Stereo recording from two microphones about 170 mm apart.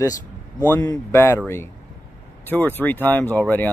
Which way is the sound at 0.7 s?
15° left (ahead or behind).